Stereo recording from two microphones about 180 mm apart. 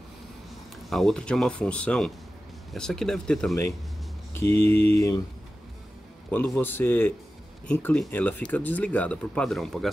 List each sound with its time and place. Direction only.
0.8 s speech: centre (ahead or behind)
4.3 s a sound: 15° left (ahead or behind)
4.9 s speech: 15° left (ahead or behind)
6.3 s speech: 5° left (ahead or behind)